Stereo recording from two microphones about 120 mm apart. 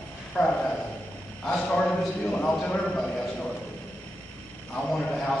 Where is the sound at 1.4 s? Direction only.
5° left (ahead or behind).